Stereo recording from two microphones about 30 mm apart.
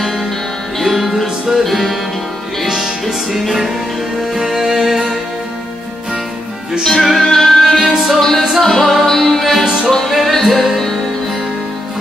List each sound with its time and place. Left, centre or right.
0.7 s music: centre
1.2 s music: centre
1.6 s music: centre
2.8 s music: centre
6.8 s music: centre
9.4 s music: centre